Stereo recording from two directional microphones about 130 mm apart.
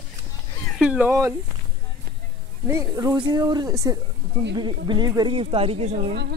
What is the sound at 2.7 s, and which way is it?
Speech, 25° right (ahead or behind).